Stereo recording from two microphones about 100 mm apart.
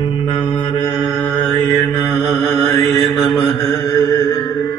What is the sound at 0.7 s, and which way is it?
Mantra, 35° left (ahead or behind).